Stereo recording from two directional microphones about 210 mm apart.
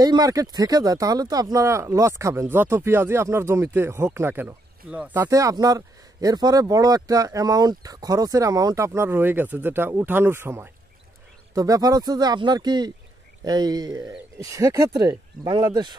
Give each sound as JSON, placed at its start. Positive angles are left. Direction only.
{"t": 0.0, "sound": "speech", "side_deg": -15}